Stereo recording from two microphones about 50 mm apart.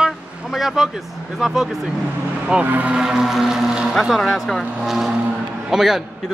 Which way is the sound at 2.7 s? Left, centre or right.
Right.